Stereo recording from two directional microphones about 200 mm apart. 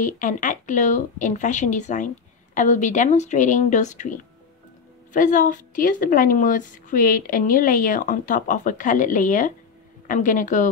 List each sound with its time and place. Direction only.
0.0 s a woman's voice: 40° left (ahead or behind)